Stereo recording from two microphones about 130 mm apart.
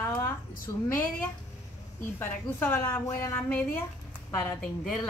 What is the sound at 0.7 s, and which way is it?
Speech, 20° left (ahead or behind).